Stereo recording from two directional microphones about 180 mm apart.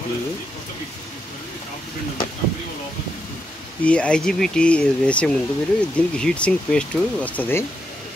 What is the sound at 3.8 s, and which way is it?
Speech, 5° left (ahead or behind).